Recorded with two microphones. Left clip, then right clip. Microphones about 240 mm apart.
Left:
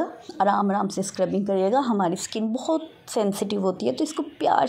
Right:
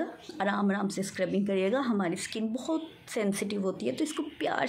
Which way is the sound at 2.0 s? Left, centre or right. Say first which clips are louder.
Left 7 dB; centre.